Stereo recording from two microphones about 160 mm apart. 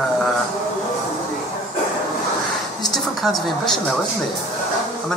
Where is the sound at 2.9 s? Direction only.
Centre (ahead or behind).